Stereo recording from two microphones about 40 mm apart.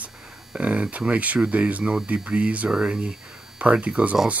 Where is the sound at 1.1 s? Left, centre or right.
Right.